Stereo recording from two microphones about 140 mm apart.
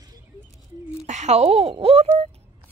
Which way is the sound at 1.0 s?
55° right (ahead or behind).